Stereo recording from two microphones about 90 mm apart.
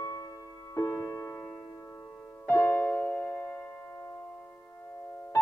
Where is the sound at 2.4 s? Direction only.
30° left (ahead or behind).